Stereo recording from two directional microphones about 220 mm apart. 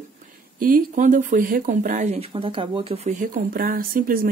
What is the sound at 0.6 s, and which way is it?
Speech, 40° right (ahead or behind).